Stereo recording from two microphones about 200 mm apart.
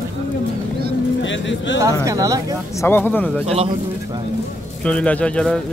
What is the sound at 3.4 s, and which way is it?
Speech, 30° right (ahead or behind).